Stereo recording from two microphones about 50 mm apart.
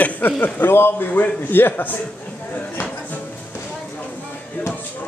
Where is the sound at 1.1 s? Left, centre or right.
Left.